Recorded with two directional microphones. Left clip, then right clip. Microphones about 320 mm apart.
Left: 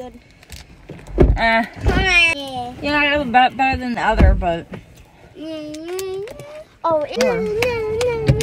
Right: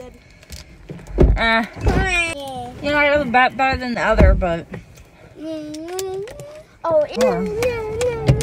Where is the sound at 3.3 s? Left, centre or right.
Centre.